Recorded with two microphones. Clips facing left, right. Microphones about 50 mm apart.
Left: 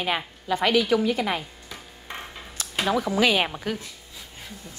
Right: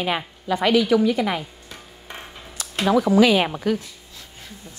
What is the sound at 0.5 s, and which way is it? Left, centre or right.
Speech, right.